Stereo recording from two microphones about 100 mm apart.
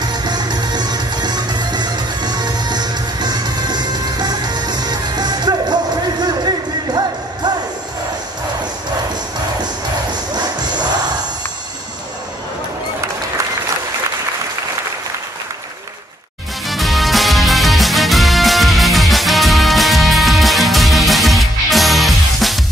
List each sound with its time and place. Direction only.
0.0 s music: 45° right (ahead or behind)
7.4 s music: 45° right (ahead or behind)
16.6 s music: centre (ahead or behind)